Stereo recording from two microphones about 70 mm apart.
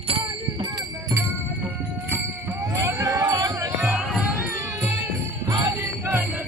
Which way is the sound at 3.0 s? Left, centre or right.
Right.